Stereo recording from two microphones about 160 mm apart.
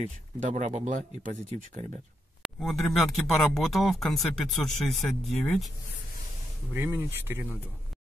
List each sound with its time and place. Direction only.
0.0 s speech: 45° right (ahead or behind)
2.4 s speech: centre (ahead or behind)
6.7 s speech: 15° right (ahead or behind)